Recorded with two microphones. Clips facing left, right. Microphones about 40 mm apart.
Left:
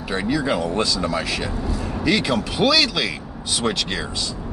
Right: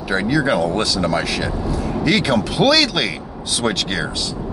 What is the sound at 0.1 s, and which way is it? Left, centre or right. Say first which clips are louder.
Speech: right 4 dB; centre.